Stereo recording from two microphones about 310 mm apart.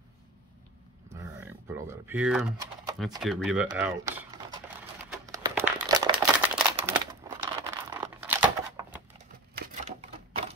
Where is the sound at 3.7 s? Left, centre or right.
Centre.